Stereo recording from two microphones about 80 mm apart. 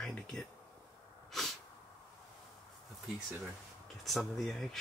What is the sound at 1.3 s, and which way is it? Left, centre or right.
Sneeze, centre.